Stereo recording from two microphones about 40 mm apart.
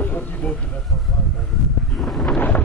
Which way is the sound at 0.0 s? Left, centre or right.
Left.